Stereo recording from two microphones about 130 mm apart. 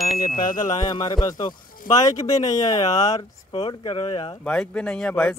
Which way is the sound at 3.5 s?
40° left (ahead or behind).